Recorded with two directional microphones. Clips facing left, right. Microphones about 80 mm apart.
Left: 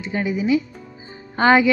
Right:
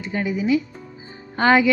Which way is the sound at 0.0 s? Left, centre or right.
Centre.